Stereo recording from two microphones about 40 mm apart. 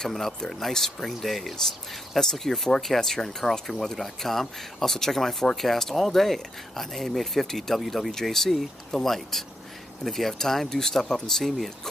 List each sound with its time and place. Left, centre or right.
0.4 s speech: centre